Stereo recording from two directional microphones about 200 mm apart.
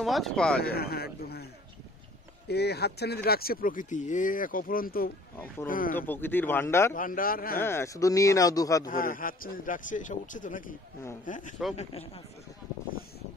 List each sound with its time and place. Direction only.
0.0 s speech: centre (ahead or behind)
0.7 s speech: 50° left (ahead or behind)
5.9 s speech: 10° left (ahead or behind)
6.9 s speech: 45° left (ahead or behind)
7.6 s speech: 15° left (ahead or behind)
8.8 s a man's voice: 40° left (ahead or behind)